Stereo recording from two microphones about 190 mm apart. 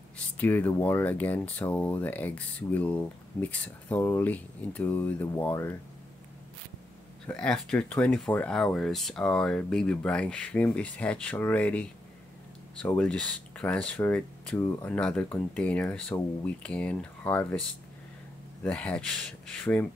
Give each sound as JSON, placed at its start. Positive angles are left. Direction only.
{"t": 0.4, "sound": "speech", "side_deg": 10}
{"t": 7.2, "sound": "speech", "side_deg": 5}
{"t": 18.6, "sound": "speech", "side_deg": 5}